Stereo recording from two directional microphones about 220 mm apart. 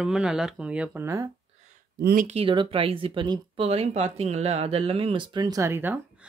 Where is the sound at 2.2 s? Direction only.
25° right (ahead or behind).